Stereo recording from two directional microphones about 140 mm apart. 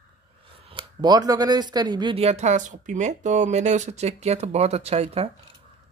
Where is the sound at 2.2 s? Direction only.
50° right (ahead or behind).